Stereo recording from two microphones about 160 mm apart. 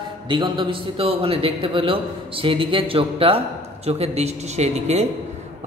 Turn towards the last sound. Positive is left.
turn(degrees=-45)  # may be behind; listen again after turning